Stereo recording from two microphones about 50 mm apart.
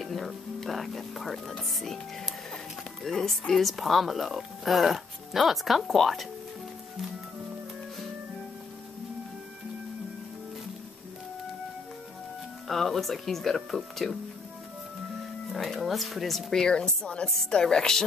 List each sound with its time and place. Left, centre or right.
0.0 s music: centre
1.8 s speech: centre
12.6 s speech: centre
15.5 s speech: centre
16.5 s speech: centre